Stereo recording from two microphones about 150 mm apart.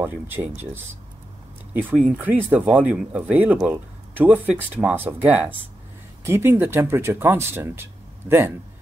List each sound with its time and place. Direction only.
0.0 s speech: 10° right (ahead or behind)
1.7 s speech: 10° right (ahead or behind)